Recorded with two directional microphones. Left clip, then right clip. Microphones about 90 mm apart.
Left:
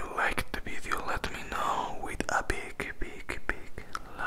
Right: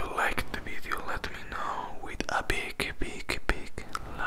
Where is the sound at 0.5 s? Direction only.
15° left (ahead or behind).